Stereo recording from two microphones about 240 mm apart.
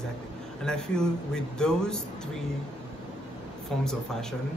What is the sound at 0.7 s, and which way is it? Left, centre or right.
Speech, centre.